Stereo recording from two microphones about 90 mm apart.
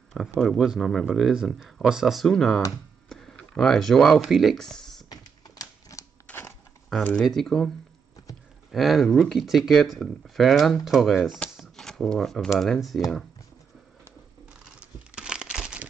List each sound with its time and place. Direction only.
0.4 s speech: centre (ahead or behind)
5.1 s typewriter: 40° left (ahead or behind)
7.0 s speech: 15° left (ahead or behind)
7.2 s speech: 5° left (ahead or behind)
8.7 s speech: centre (ahead or behind)
11.5 s shuffling cards: centre (ahead or behind)
12.5 s speech: 5° left (ahead or behind)
14.8 s crumpling: 10° right (ahead or behind)